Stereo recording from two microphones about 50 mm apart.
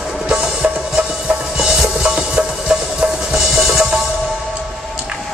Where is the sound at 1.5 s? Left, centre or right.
Centre.